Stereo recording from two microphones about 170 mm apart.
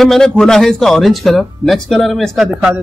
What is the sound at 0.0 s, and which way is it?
Speech, centre (ahead or behind).